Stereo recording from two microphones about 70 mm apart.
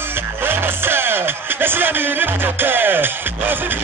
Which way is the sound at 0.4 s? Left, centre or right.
Right.